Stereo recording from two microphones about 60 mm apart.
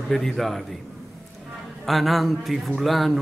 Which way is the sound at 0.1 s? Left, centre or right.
Centre.